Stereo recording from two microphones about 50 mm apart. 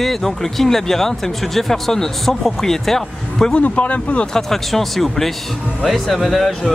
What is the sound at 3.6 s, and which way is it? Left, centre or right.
Speech, left.